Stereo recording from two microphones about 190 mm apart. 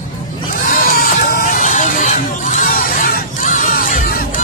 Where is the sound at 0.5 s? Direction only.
45° left (ahead or behind).